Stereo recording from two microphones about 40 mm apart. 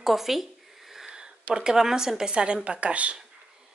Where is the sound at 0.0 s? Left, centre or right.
Centre.